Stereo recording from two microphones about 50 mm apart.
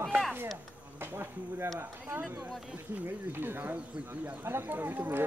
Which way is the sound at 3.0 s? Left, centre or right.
Right.